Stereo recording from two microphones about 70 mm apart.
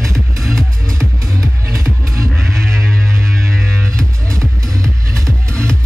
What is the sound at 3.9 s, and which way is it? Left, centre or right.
Music, right.